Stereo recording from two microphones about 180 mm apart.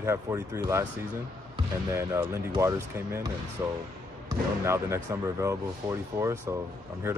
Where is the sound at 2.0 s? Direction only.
15° right (ahead or behind).